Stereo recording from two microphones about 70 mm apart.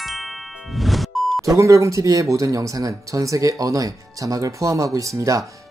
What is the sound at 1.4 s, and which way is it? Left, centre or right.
Speech, right.